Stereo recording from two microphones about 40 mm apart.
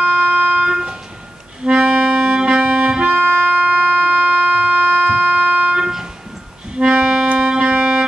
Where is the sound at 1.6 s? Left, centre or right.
Right.